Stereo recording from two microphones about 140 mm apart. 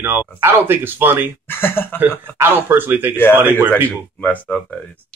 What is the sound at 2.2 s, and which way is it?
Speech, 15° right (ahead or behind).